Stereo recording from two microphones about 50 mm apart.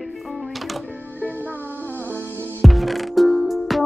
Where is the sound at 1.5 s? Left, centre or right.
Left.